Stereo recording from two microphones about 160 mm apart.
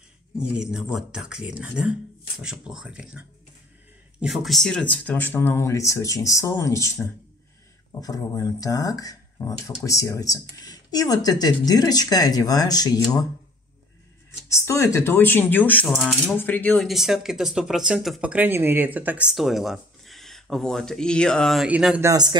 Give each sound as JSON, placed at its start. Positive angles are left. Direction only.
{"t": 0.4, "sound": "speech", "side_deg": -5}
{"t": 14.5, "sound": "speech", "side_deg": 20}
{"t": 15.9, "sound": "speech", "side_deg": 0}
{"t": 16.3, "sound": "speech", "side_deg": 10}
{"t": 21.6, "sound": "speech", "side_deg": -10}
{"t": 22.0, "sound": "a man's voice", "side_deg": -25}